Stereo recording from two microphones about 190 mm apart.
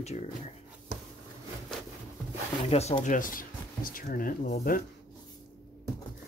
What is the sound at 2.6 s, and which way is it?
Speech, 35° left (ahead or behind).